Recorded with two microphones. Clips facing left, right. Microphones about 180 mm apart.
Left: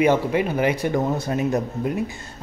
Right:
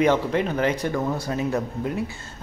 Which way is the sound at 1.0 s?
25° left (ahead or behind).